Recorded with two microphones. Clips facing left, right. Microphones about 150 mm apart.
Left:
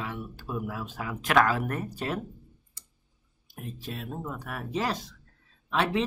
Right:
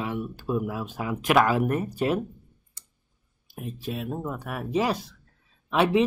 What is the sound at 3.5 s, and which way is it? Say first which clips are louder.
Speech: right 5 dB; 10° right (ahead or behind).